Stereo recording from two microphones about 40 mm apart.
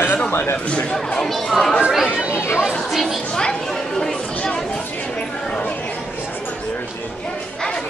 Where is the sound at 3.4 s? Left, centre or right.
Centre.